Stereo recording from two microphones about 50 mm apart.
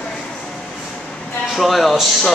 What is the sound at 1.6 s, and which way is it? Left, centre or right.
Speech, centre.